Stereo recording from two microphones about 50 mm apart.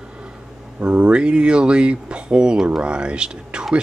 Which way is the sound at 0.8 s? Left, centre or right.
Right.